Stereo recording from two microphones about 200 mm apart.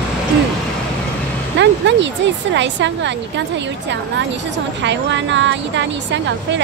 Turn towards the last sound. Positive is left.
turn(degrees=-65)  # may be behind; listen again after turning